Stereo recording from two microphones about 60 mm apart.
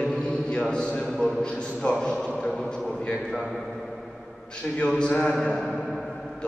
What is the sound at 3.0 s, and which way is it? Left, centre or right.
Speech, centre.